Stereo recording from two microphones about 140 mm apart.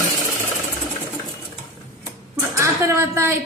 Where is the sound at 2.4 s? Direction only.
20° right (ahead or behind).